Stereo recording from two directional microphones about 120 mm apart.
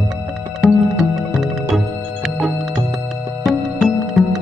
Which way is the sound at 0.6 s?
Centre (ahead or behind).